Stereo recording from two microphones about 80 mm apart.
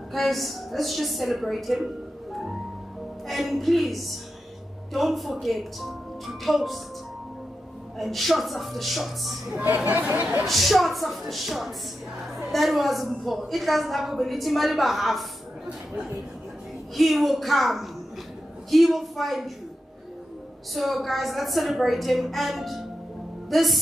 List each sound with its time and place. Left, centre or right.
0.1 s a woman's voice: centre
3.3 s a woman's voice: centre
8.0 s a woman's voice: centre
9.8 s speech: right
10.4 s a woman's voice: centre
16.9 s a woman's voice: centre
20.7 s a woman's voice: centre